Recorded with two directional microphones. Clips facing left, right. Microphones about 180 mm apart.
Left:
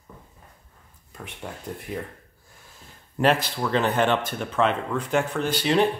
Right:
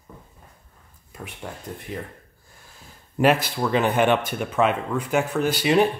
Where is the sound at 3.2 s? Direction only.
10° right (ahead or behind).